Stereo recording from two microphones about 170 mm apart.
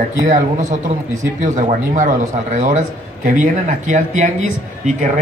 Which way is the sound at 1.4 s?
45° right (ahead or behind).